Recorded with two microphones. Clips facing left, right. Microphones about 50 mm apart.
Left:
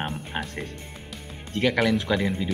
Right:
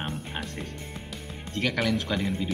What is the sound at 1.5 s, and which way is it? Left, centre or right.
Speech, left.